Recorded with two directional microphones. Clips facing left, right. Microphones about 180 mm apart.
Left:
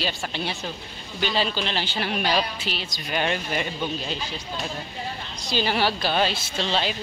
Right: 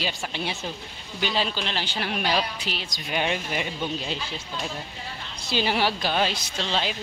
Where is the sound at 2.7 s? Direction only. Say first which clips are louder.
Left 1 dB; 50° right (ahead or behind).